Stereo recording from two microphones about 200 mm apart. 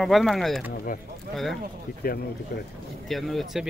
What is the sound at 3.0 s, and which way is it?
Speech, centre (ahead or behind).